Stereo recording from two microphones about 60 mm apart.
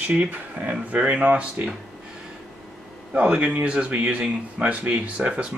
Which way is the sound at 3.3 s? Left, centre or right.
Right.